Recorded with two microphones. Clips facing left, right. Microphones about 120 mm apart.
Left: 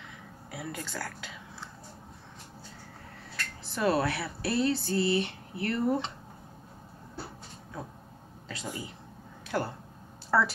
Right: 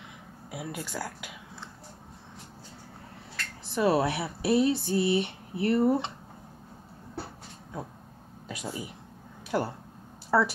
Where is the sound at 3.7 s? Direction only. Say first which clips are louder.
Right 3 dB; 15° right (ahead or behind).